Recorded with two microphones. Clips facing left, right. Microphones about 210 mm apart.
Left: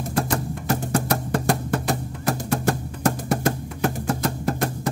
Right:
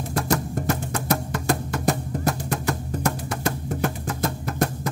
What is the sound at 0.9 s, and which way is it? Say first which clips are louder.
Music: left 3 dB; 35° left (ahead or behind).